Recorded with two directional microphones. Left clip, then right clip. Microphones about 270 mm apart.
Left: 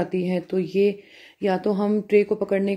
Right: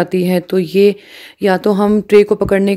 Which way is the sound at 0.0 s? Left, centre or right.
Right.